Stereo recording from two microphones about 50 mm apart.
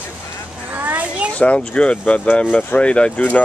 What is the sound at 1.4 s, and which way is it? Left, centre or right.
Speech, left.